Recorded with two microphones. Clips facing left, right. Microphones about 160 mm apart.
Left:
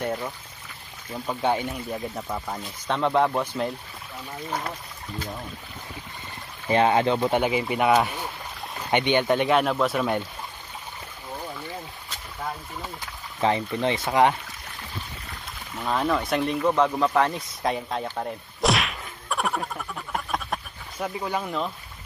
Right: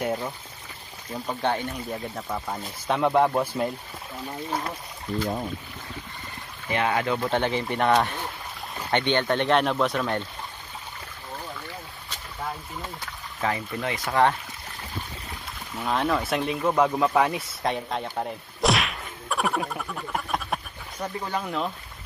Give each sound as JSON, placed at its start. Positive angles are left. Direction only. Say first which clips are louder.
{"t": 0.0, "sound": "speech", "louder": "right 1 dB", "side_deg": -5}
{"t": 1.1, "sound": "speech", "louder": "left 2 dB", "side_deg": 5}
{"t": 2.4, "sound": "speech", "louder": "right 1 dB", "side_deg": -10}
{"t": 6.7, "sound": "speech", "louder": "left 5 dB", "side_deg": 30}
{"t": 7.2, "sound": "speech", "louder": "left 2 dB", "side_deg": 10}
{"t": 13.4, "sound": "speech", "louder": "left 5 dB", "side_deg": 25}
{"t": 15.8, "sound": "speech", "louder": "even", "side_deg": 0}